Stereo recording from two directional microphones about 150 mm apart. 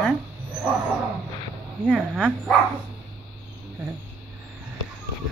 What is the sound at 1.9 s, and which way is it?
Speech, 5° right (ahead or behind).